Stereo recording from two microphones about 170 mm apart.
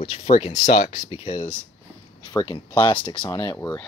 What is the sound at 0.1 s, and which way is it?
Speech, 40° left (ahead or behind).